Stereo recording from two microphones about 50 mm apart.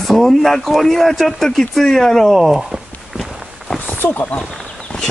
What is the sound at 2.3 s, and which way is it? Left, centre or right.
Speech, centre.